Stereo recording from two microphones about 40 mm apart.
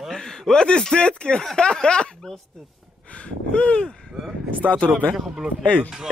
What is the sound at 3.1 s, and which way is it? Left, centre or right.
Speech, left.